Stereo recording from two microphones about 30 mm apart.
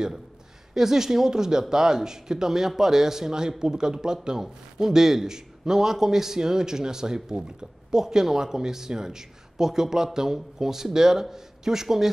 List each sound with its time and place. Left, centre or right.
0.7 s speech: centre